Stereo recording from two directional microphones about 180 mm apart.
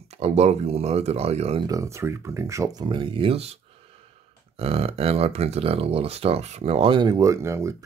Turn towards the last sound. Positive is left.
turn(degrees=-15)  # may be behind; listen again after turning